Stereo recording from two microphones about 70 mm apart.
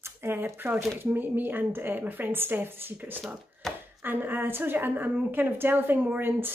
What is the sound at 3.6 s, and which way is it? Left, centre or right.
Chopping, centre.